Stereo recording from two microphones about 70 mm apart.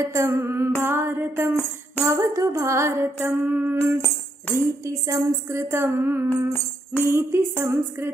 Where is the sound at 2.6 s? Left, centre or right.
Right.